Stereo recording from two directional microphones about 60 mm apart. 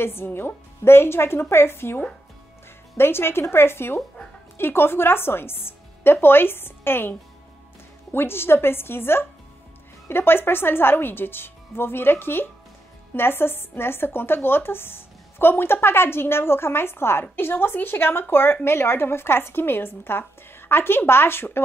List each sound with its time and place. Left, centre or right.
0.0 s a woman's voice: left